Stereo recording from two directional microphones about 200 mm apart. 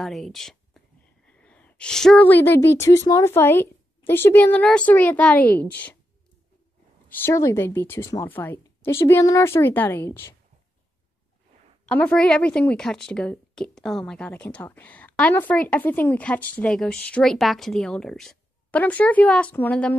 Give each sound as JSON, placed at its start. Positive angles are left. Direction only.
{"t": 0.0, "sound": "a woman's voice", "side_deg": 0}
{"t": 7.1, "sound": "speech", "side_deg": 10}
{"t": 11.9, "sound": "a woman's voice", "side_deg": 5}